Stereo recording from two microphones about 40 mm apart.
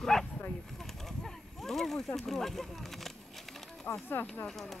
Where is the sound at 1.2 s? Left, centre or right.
Centre.